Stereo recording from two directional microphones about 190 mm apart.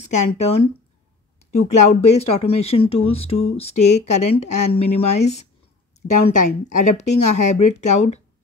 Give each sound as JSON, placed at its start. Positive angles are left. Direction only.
{"t": 0.0, "sound": "speech", "side_deg": 35}